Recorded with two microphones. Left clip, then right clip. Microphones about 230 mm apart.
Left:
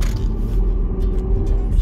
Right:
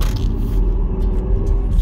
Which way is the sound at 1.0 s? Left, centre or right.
Centre.